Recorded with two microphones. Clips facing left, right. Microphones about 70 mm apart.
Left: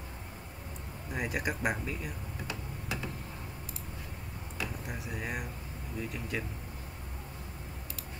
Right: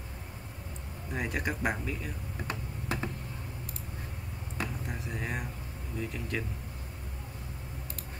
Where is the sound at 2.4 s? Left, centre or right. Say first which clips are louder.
Right 4 dB; right.